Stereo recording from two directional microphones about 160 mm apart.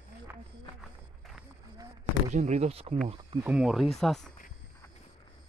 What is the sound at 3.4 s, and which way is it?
Speech, 5° right (ahead or behind).